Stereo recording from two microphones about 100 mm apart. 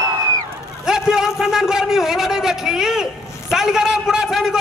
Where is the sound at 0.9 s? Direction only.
5° right (ahead or behind).